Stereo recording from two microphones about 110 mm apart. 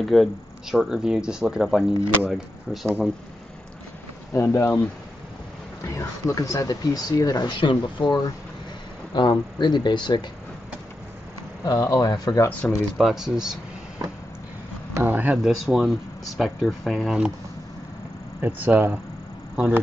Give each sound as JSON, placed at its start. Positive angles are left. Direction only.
{"t": 0.0, "sound": "speech", "side_deg": 0}
{"t": 4.3, "sound": "speech", "side_deg": 25}
{"t": 5.9, "sound": "speech", "side_deg": 30}
{"t": 11.6, "sound": "speech", "side_deg": 40}
{"t": 12.4, "sound": "speech", "side_deg": 15}
{"t": 12.9, "sound": "speech", "side_deg": -5}
{"t": 15.0, "sound": "speech", "side_deg": -15}
{"t": 15.3, "sound": "speech", "side_deg": 0}
{"t": 18.4, "sound": "speech", "side_deg": -20}